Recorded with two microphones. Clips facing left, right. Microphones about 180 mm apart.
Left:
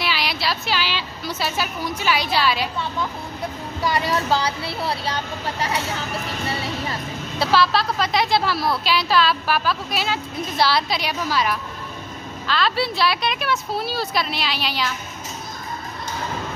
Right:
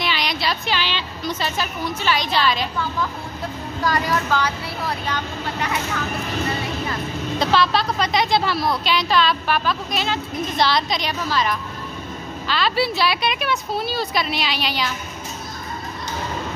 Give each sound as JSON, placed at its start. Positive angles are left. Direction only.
{"t": 0.0, "sound": "a woman's voice", "side_deg": 5}
{"t": 4.0, "sound": "speech", "side_deg": 30}
{"t": 7.3, "sound": "a woman's voice", "side_deg": 5}
{"t": 12.4, "sound": "a woman's voice", "side_deg": 0}